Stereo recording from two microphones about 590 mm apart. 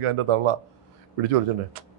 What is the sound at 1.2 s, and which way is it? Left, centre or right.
Speech, right.